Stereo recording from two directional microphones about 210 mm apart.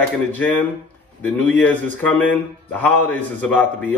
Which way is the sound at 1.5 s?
5° left (ahead or behind).